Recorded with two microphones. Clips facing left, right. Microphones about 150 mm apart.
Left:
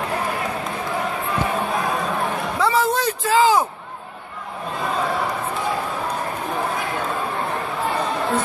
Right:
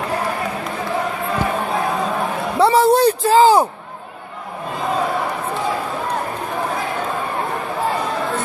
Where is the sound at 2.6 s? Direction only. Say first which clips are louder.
Right 8 dB; 30° right (ahead or behind).